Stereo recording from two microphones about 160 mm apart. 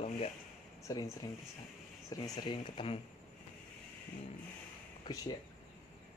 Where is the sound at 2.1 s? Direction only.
25° left (ahead or behind).